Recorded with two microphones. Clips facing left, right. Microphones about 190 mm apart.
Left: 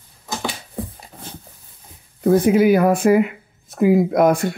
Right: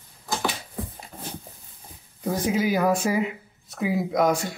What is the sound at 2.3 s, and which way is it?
Speech, 60° left (ahead or behind).